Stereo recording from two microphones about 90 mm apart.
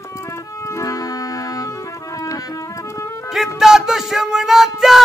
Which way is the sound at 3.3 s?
5° right (ahead or behind).